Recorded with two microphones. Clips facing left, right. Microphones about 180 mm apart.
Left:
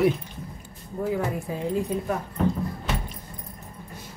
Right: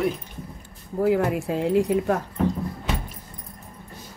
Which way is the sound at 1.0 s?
75° right (ahead or behind).